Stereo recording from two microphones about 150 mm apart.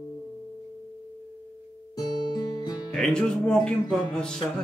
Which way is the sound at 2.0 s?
30° left (ahead or behind).